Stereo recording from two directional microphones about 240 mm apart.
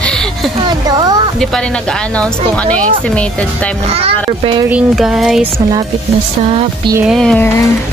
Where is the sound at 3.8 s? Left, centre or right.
Right.